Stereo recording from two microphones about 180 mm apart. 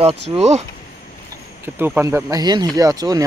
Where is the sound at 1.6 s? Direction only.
10° right (ahead or behind).